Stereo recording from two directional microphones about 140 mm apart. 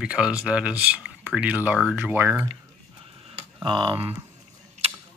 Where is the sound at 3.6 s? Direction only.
35° right (ahead or behind).